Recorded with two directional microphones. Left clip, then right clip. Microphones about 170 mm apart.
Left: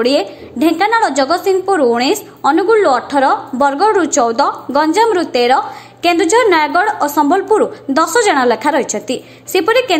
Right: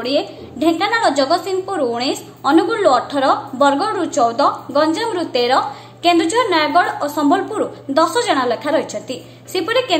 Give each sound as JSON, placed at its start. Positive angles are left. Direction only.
{"t": 0.0, "sound": "a woman's voice", "side_deg": 35}